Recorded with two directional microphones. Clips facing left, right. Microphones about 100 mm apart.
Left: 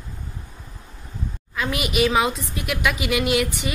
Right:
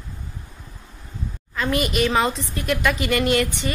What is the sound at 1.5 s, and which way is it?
A woman's voice, 5° left (ahead or behind).